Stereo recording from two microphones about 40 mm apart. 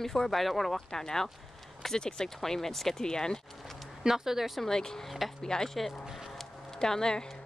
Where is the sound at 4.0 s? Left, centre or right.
Centre.